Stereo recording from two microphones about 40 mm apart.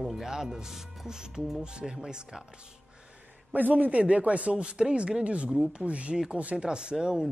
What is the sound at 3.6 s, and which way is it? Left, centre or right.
Speech, right.